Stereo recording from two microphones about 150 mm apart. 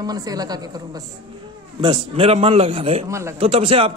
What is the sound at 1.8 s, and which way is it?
A man's voice, 35° right (ahead or behind).